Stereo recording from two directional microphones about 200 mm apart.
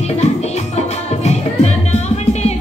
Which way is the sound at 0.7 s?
35° left (ahead or behind).